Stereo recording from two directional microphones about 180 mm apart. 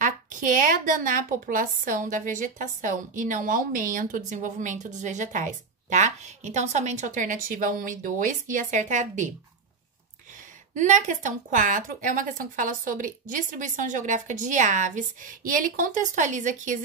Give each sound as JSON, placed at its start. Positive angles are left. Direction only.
{"t": 0.0, "sound": "a woman's voice", "side_deg": -45}
{"t": 10.7, "sound": "a woman's voice", "side_deg": -45}